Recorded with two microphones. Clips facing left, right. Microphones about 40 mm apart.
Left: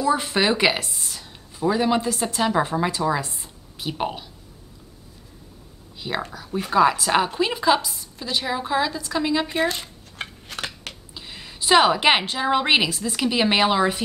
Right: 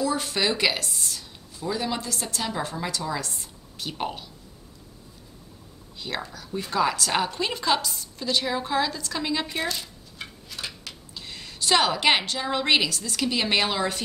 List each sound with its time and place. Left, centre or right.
0.0 s speech: left
5.9 s a woman's voice: centre
9.7 s dishes: left
10.5 s a sound: left
11.1 s a woman's voice: centre